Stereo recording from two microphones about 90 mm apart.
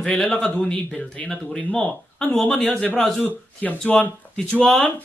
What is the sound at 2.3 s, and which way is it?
Speech, 5° left (ahead or behind).